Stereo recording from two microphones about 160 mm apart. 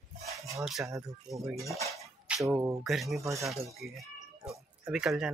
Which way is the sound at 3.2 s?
20° right (ahead or behind).